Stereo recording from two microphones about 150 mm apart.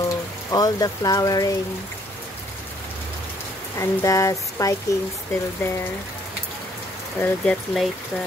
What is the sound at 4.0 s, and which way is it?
Speech, 20° left (ahead or behind).